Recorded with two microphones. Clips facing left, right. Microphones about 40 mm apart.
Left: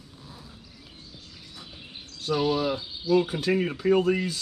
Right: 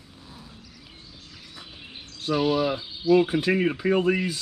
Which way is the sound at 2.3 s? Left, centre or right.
Centre.